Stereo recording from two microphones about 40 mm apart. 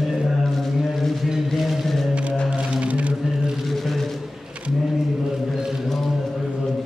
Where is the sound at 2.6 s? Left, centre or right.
Right.